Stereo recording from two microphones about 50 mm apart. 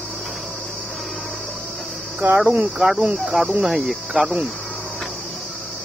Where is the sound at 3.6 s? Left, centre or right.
Centre.